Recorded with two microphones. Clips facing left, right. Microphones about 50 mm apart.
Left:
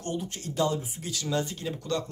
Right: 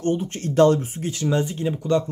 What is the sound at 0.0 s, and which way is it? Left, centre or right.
Speech, right.